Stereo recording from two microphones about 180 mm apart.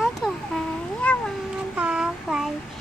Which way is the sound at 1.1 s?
5° left (ahead or behind).